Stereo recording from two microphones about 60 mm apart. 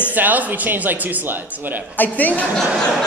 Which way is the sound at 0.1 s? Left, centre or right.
Right.